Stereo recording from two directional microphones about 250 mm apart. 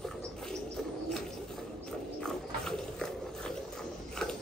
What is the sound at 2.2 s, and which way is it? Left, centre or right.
Horse, centre.